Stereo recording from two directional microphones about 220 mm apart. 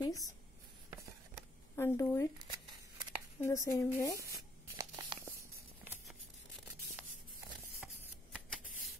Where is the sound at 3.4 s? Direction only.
15° left (ahead or behind).